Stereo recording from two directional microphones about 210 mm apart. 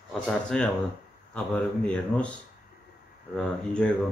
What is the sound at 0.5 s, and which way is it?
A man's voice, 5° left (ahead or behind).